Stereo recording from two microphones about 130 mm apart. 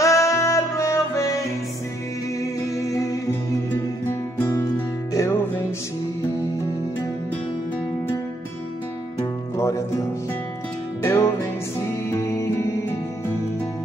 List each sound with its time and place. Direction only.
0.0 s music: 25° left (ahead or behind)
2.7 s music: 25° left (ahead or behind)
4.4 s music: 15° left (ahead or behind)
9.6 s music: 25° left (ahead or behind)